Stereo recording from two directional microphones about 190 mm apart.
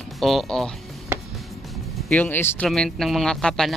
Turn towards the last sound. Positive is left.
turn(degrees=0)  # may be behind; listen again after turning